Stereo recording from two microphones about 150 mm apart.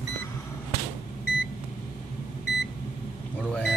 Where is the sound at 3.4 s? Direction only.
5° left (ahead or behind).